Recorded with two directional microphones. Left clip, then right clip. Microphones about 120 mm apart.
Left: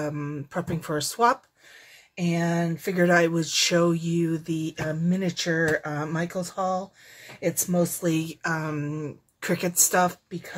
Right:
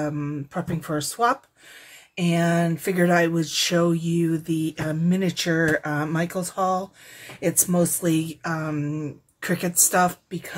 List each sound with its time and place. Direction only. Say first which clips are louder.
0.0 s speech: right 3 dB; 30° left (ahead or behind)
2.1 s speech: right 4 dB; centre (ahead or behind)
3.0 s speech: even; 25° left (ahead or behind)
5.1 s speech: right 3 dB; centre (ahead or behind)
8.2 s speech: right 1 dB; 35° left (ahead or behind)